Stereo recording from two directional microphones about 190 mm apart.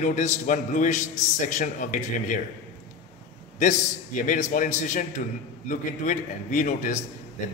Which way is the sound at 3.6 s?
45° left (ahead or behind).